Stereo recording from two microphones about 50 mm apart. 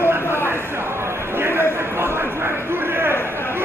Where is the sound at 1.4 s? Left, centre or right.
Right.